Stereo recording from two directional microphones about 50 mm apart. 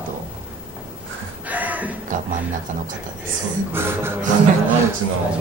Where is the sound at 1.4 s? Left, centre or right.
Right.